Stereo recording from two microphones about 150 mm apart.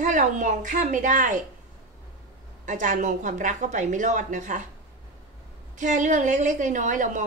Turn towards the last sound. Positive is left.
turn(degrees=-55)  # may be behind; listen again after turning